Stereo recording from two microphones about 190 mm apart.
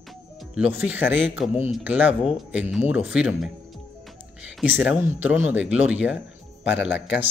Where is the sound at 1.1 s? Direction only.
75° left (ahead or behind).